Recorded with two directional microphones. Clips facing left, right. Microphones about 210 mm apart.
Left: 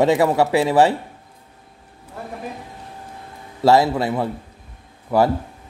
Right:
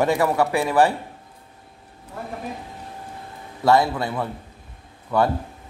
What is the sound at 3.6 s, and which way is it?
Speech, 25° left (ahead or behind).